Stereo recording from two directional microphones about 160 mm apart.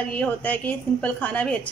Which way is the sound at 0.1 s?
10° left (ahead or behind).